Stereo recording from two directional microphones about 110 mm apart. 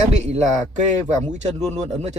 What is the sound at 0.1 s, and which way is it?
Speech, 90° right.